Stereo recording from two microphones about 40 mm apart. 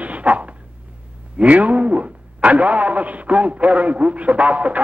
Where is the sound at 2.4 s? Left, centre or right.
Right.